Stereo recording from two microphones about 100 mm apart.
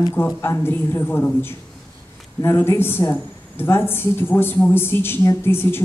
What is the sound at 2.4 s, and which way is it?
A woman's voice, 25° left (ahead or behind).